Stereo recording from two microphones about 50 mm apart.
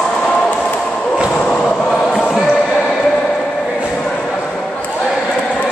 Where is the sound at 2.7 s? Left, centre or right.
Centre.